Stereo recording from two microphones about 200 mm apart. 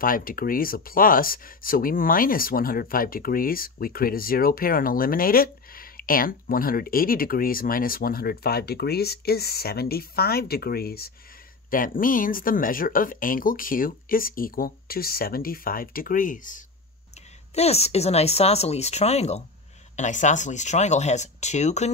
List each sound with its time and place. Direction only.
0.0 s speech: 45° left (ahead or behind)